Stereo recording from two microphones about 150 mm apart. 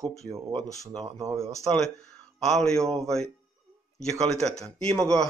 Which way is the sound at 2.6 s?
5° left (ahead or behind).